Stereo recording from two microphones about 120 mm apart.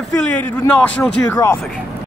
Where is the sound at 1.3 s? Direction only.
25° left (ahead or behind).